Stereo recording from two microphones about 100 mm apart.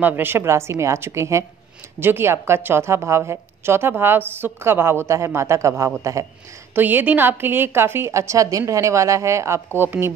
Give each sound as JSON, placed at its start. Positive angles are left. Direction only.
{"t": 0.0, "sound": "a woman's voice", "side_deg": -20}
{"t": 6.7, "sound": "a woman's voice", "side_deg": -20}